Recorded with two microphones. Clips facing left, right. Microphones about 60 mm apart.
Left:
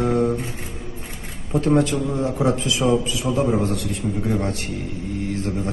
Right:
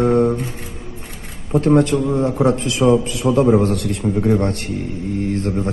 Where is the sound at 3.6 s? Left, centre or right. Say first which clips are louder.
Right 5 dB; right.